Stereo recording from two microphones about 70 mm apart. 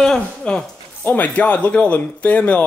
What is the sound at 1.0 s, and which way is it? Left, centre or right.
Speech, left.